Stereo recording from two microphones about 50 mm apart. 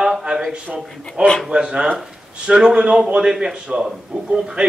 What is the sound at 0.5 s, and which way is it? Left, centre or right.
A man's voice, right.